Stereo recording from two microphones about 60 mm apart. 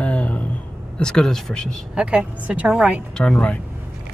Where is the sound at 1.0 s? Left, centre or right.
Centre.